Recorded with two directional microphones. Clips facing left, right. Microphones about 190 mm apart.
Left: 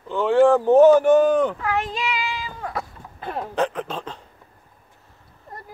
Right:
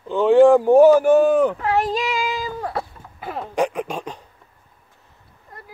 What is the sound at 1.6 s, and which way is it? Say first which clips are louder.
Child singing: right 5 dB; 35° right (ahead or behind).